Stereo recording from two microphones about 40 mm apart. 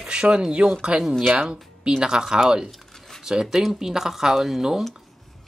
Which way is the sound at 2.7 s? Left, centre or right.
Centre.